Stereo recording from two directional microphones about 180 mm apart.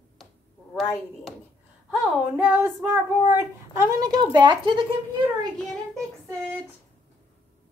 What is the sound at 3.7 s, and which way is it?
Speech, 20° right (ahead or behind).